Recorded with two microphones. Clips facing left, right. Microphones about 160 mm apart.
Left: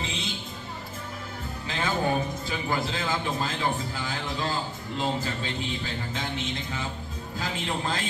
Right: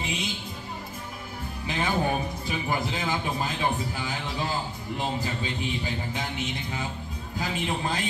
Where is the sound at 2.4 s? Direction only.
15° right (ahead or behind).